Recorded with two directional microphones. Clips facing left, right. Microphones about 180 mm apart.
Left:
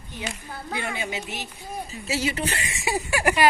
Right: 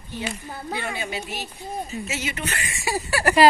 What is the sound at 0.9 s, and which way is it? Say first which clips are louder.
Speech: right 1 dB; 20° left (ahead or behind).